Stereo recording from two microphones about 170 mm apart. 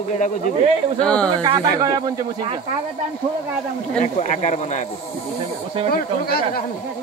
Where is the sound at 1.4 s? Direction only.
20° right (ahead or behind).